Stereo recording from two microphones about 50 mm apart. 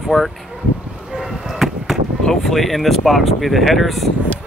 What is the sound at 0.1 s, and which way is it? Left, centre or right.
Speech, centre.